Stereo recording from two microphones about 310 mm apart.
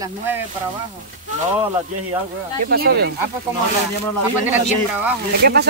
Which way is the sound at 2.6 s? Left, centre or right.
Right.